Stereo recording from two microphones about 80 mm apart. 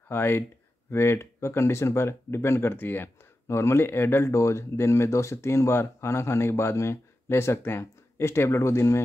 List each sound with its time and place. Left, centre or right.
0.1 s speech: left